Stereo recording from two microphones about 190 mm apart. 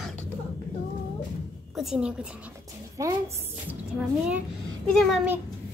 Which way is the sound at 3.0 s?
15° right (ahead or behind).